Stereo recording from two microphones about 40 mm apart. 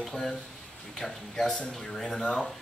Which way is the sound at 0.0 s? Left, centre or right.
Centre.